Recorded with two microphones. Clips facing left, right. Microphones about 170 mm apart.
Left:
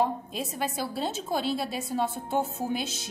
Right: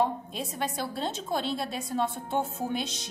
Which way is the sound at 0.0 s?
5° left (ahead or behind).